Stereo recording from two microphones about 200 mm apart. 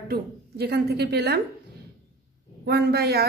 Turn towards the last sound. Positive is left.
turn(degrees=-55)  # may be behind; listen again after turning